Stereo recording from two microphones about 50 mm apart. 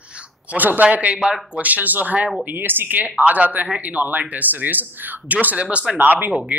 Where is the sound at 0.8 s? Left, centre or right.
Right.